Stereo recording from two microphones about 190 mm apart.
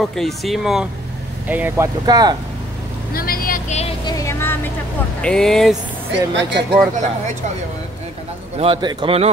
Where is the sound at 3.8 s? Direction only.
30° left (ahead or behind).